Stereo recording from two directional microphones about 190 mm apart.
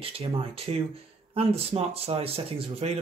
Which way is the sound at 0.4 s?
30° right (ahead or behind).